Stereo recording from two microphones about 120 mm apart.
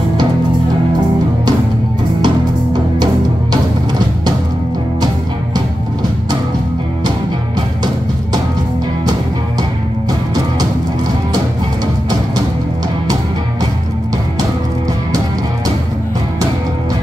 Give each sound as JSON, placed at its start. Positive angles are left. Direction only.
{"t": 2.2, "sound": "music", "side_deg": -35}